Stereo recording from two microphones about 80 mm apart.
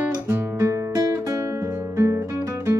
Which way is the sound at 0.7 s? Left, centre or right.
Right.